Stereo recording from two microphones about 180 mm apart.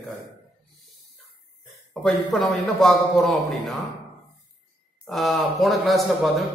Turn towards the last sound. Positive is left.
turn(degrees=0)  # may be behind; listen again after turning